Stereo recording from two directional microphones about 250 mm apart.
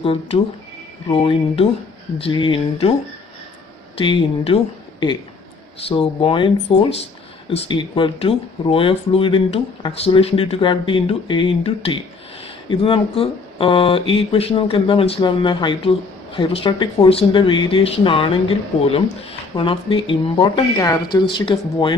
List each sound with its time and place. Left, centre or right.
0.0 s speech: left
4.0 s speech: centre
5.9 s speech: left